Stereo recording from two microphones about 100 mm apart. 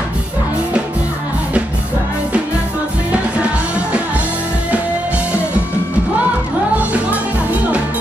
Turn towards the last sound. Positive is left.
turn(degrees=-15)  # may be behind; listen again after turning